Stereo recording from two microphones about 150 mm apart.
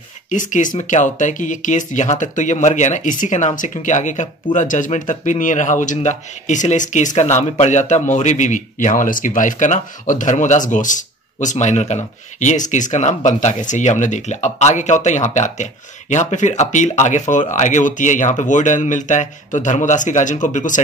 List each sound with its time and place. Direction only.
0.3 s speech: 55° left (ahead or behind)